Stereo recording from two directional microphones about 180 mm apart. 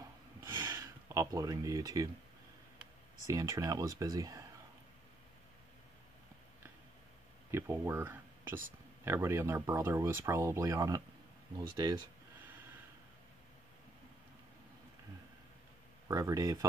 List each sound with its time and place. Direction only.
0.6 s a sound: 20° right (ahead or behind)
3.3 s speech: 20° right (ahead or behind)
7.5 s speech: 15° right (ahead or behind)
16.1 s speech: 20° right (ahead or behind)